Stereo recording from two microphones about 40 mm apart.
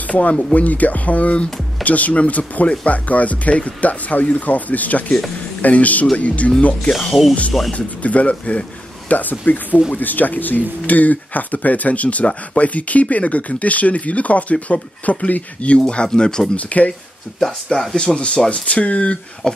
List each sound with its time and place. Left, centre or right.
0.0 s speech: left
6.9 s speech: centre
7.7 s speech: left
9.1 s speech: left
15.9 s speech: left
16.5 s speech: left
17.4 s speech: centre
17.9 s speech: left
19.4 s speech: centre